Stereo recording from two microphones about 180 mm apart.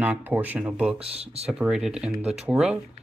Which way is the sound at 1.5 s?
5° right (ahead or behind).